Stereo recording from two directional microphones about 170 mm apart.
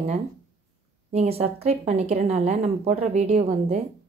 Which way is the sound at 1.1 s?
40° right (ahead or behind).